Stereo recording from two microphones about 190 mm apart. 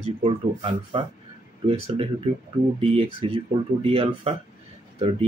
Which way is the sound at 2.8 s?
30° right (ahead or behind).